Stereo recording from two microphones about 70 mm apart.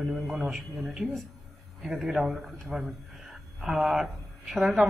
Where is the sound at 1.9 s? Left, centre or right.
Centre.